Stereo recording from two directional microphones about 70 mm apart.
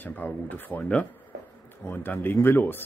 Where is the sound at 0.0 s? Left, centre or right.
Left.